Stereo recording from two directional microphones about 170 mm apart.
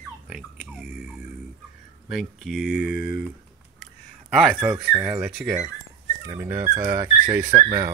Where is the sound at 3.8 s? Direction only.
Centre (ahead or behind).